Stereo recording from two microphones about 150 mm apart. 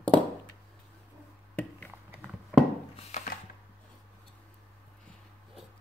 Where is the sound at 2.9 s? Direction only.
50° left (ahead or behind).